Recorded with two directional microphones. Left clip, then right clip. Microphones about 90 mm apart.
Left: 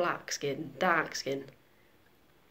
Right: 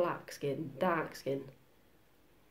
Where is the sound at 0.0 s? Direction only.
20° right (ahead or behind).